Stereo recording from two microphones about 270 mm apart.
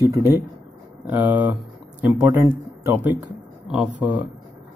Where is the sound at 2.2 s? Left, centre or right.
Centre.